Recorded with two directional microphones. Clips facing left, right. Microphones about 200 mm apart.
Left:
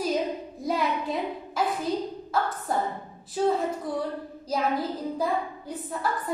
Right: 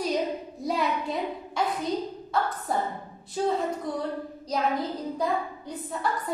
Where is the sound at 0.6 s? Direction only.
Centre (ahead or behind).